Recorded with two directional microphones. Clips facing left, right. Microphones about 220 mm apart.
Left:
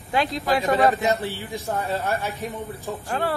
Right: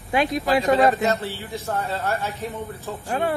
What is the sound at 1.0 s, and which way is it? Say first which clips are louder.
A man's voice: even; 15° left (ahead or behind).